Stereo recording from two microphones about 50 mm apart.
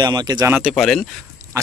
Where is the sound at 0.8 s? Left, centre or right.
Centre.